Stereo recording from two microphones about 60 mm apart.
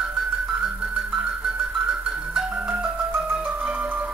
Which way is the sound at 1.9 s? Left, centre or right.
Centre.